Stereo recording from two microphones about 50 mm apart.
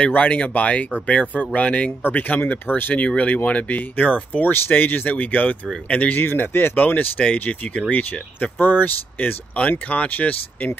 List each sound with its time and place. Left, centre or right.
0.0 s speech: left